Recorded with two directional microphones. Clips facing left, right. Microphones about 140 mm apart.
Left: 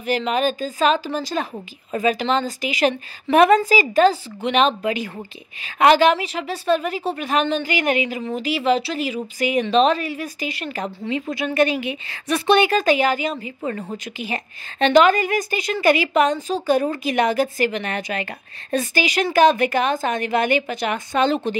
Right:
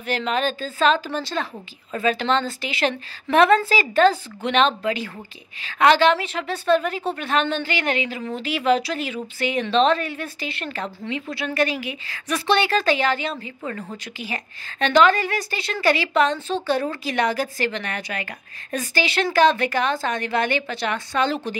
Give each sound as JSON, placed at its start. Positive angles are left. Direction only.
{"t": 0.0, "sound": "speech", "side_deg": 10}
{"t": 4.8, "sound": "speech", "side_deg": 20}
{"t": 11.1, "sound": "a woman's voice", "side_deg": 25}
{"t": 13.6, "sound": "a woman's voice", "side_deg": 25}